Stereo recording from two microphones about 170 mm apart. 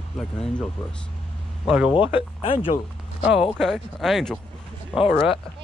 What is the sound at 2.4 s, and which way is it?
Speech, 30° left (ahead or behind).